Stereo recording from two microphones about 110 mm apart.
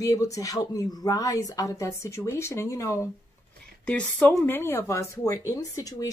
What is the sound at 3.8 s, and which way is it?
Speech, 10° left (ahead or behind).